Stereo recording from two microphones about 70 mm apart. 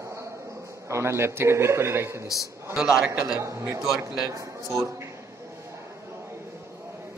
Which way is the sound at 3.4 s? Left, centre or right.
Right.